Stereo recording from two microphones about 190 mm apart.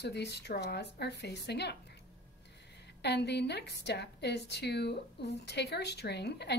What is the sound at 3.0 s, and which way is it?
A woman's voice, 60° left (ahead or behind).